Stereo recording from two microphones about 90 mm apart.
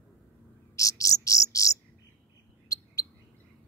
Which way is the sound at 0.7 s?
40° left (ahead or behind).